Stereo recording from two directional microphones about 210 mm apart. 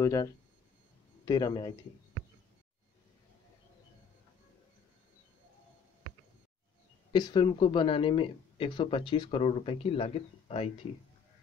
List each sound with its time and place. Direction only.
0.0 s speech: 15° left (ahead or behind)
7.1 s speech: 20° left (ahead or behind)